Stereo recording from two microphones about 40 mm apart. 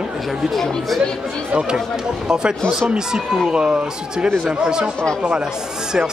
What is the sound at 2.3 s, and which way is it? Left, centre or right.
Speech, centre.